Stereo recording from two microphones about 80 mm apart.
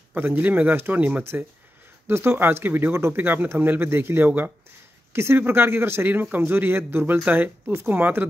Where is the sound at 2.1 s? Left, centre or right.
Right.